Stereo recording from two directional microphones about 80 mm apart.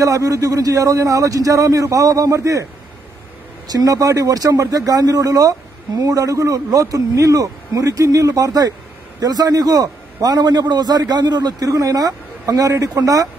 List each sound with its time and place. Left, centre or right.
0.0 s a man's voice: right
3.6 s a man's voice: right
11.6 s a man's voice: right